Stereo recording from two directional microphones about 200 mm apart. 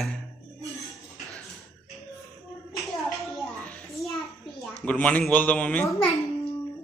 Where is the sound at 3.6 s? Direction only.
5° left (ahead or behind).